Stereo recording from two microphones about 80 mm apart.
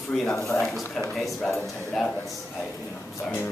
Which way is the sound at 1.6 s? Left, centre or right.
Centre.